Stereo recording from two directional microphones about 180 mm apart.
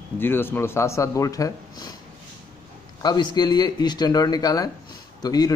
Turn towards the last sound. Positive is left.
turn(degrees=20)  # may be behind; listen again after turning